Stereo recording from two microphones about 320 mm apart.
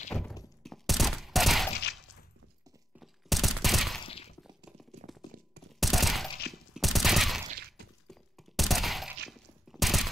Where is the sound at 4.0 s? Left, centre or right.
Centre.